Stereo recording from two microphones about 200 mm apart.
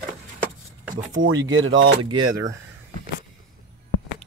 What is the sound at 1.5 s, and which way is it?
Speech, 75° right (ahead or behind).